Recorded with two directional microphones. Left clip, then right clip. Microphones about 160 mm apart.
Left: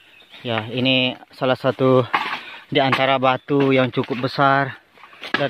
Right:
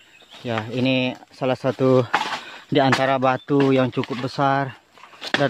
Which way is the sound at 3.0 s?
15° right (ahead or behind).